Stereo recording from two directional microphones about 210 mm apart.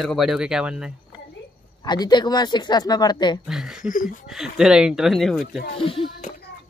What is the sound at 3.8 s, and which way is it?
Speech, 40° left (ahead or behind).